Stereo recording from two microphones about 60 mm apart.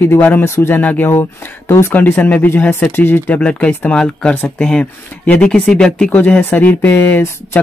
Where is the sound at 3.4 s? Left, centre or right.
Left.